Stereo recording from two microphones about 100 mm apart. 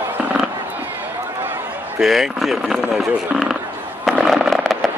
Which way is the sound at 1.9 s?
5° right (ahead or behind).